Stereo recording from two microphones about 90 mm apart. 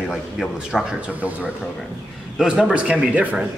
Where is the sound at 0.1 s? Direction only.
Centre (ahead or behind).